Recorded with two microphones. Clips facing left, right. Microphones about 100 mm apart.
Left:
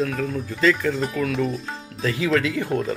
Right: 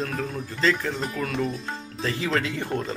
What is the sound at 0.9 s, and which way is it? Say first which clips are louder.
Speech: left 5 dB; centre (ahead or behind).